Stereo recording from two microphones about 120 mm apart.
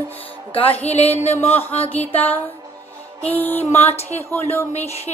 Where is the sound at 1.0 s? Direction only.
60° left (ahead or behind).